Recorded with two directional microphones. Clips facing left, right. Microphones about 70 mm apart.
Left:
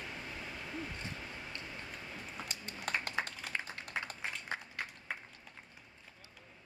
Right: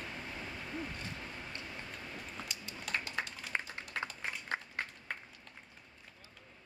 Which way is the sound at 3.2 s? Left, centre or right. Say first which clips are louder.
Left 2 dB; left.